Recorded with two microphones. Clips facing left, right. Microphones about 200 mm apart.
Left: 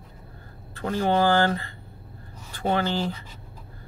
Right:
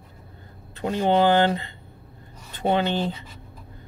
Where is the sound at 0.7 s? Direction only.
20° right (ahead or behind).